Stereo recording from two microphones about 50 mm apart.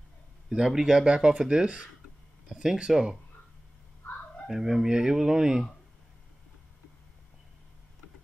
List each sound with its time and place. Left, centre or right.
0.6 s speech: centre
1.0 s speech: centre
4.5 s speech: centre